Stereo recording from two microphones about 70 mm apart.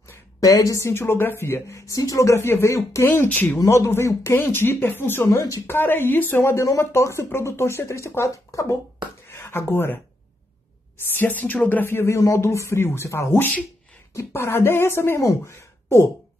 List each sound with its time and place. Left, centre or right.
0.4 s a woman's voice: left
2.4 s speech: left
3.1 s speech: left
3.6 s a woman's voice: left
9.3 s speech: left
11.1 s speech: left